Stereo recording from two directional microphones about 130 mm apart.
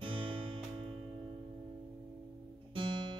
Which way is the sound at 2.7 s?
40° right (ahead or behind).